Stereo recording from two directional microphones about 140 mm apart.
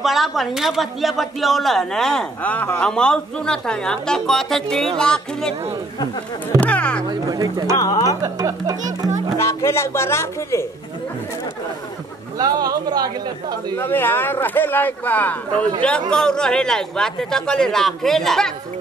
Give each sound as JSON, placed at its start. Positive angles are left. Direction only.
{"t": 0.0, "sound": "speech", "side_deg": 0}
{"t": 6.6, "sound": "speech", "side_deg": 10}
{"t": 7.1, "sound": "a man's voice", "side_deg": -25}
{"t": 7.7, "sound": "speech", "side_deg": 25}
{"t": 8.2, "sound": "a man's voice", "side_deg": -25}
{"t": 9.4, "sound": "speech", "side_deg": 20}
{"t": 12.4, "sound": "a man's voice", "side_deg": -30}
{"t": 13.7, "sound": "speech", "side_deg": 15}